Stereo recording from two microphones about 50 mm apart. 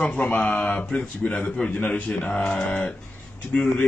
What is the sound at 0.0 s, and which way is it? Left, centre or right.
Speech, left.